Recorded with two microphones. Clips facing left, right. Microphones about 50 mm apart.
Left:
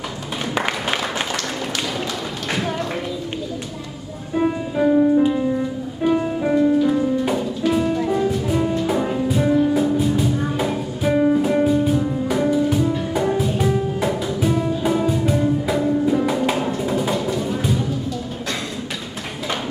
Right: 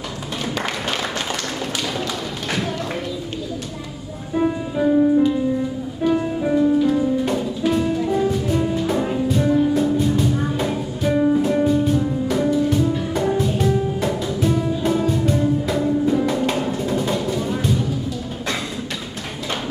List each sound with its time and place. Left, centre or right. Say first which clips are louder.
0.6 s applause: left 4 dB; left
2.0 s a sound: even; centre
4.4 s music: left 1 dB; centre